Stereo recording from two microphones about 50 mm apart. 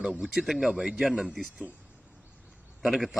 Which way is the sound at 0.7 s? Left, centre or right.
Right.